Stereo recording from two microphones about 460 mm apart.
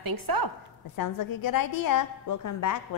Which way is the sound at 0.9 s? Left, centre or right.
Left.